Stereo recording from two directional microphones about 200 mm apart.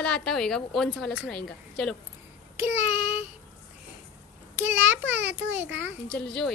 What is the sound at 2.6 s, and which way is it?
Speech, 10° right (ahead or behind).